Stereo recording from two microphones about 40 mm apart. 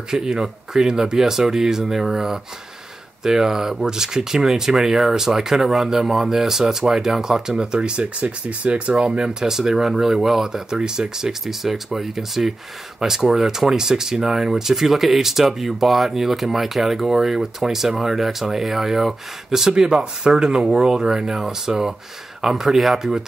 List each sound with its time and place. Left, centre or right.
0.1 s speech: centre